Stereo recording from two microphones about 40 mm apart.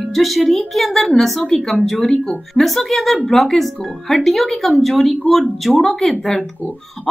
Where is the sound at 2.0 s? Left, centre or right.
Left.